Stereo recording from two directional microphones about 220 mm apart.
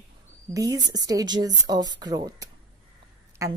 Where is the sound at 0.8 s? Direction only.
15° right (ahead or behind).